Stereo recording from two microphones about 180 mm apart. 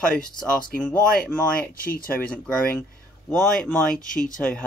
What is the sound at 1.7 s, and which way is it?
Speech, 55° left (ahead or behind).